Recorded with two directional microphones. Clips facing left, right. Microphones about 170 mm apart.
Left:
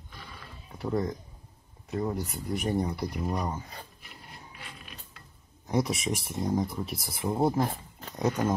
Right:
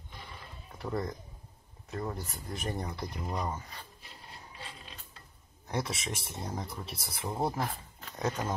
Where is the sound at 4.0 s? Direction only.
30° right (ahead or behind).